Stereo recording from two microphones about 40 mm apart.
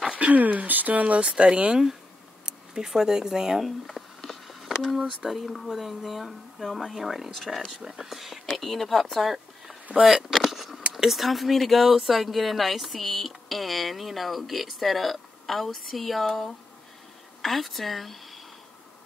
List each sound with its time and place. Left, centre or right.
0.1 s speech: right
1.2 s speech: right
2.4 s a sound: centre
2.9 s speech: centre
3.6 s speech: centre
7.7 s speech: centre
8.1 s speech: centre
9.2 s a sound: centre
11.1 s speech: centre